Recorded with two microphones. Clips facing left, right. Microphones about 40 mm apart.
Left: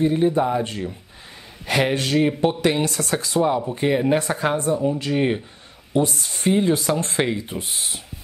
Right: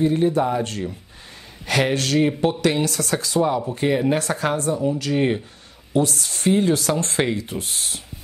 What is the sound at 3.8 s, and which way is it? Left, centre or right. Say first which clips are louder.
Speech: left 1 dB; centre.